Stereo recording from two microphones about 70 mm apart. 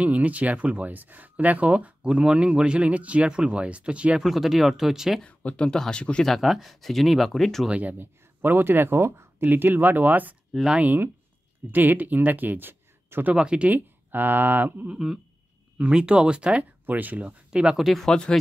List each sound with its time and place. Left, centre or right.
0.0 s speech: right
4.2 s speech: centre
5.2 s speech: centre
6.3 s speech: centre
7.6 s speech: centre
8.0 s speech: right
9.4 s speech: right
10.5 s speech: centre
10.8 s speech: right
13.3 s speech: centre
13.7 s speech: right
15.8 s speech: centre
18.0 s speech: centre